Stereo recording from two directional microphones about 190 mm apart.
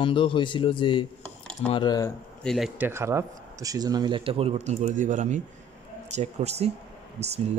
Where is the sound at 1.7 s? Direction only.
20° left (ahead or behind).